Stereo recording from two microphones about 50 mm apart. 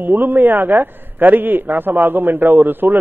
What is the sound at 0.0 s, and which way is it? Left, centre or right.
A man's voice, right.